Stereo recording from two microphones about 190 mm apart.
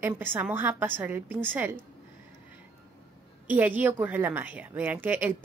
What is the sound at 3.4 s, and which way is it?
A woman's voice, 10° right (ahead or behind).